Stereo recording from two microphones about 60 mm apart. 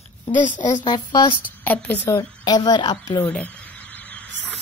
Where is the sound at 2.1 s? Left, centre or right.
Left.